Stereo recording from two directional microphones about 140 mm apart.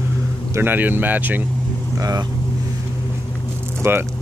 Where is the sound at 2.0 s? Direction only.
25° right (ahead or behind).